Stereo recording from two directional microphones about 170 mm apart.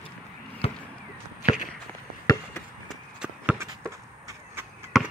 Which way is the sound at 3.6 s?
20° right (ahead or behind).